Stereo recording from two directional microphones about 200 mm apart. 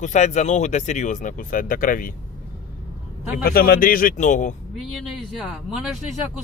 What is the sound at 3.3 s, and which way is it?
Speech, 45° left (ahead or behind).